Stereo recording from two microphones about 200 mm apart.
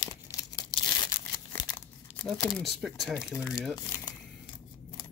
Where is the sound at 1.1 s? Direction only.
15° left (ahead or behind).